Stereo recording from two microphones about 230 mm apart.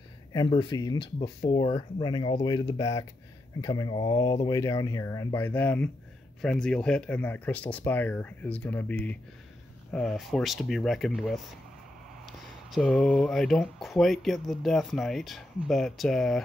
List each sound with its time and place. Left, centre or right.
0.3 s speech: centre